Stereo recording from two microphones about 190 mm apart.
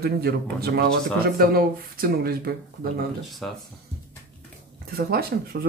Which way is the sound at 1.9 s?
55° right (ahead or behind).